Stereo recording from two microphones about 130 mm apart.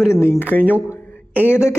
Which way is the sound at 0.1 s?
20° left (ahead or behind).